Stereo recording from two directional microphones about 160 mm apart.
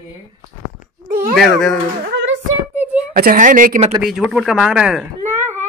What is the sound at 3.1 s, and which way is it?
Speech, 60° right (ahead or behind).